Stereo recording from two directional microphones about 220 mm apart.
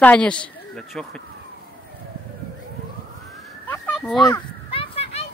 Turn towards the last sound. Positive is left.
turn(degrees=25)  # may be behind; listen again after turning